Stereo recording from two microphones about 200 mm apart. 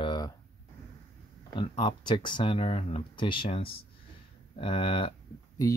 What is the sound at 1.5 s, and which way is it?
Speech, 25° left (ahead or behind).